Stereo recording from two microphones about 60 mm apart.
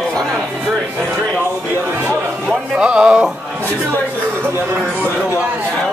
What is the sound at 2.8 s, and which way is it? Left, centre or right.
Music, centre.